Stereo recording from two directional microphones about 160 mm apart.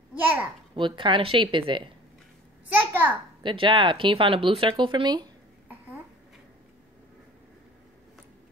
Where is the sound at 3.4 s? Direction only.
30° right (ahead or behind).